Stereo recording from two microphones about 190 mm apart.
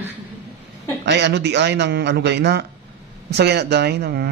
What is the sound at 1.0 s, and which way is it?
Speech, 65° right (ahead or behind).